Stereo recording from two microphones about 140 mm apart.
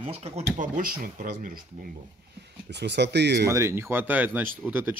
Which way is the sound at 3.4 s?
20° right (ahead or behind).